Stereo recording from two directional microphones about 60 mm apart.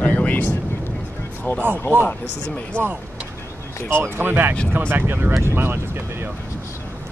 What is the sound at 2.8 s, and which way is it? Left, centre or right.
Speech, right.